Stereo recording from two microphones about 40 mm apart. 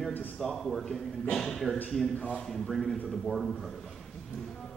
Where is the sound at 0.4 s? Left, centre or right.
Centre.